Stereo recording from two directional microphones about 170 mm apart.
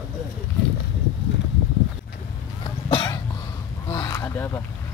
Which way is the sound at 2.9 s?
30° left (ahead or behind).